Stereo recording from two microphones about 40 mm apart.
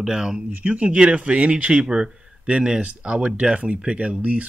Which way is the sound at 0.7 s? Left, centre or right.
Right.